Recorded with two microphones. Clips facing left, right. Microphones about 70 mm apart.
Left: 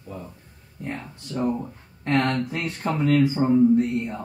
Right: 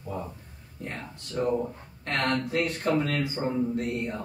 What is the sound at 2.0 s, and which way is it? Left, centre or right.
Speech, left.